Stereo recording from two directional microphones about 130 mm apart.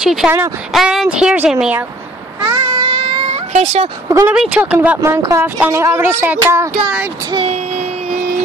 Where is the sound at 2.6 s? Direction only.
35° right (ahead or behind).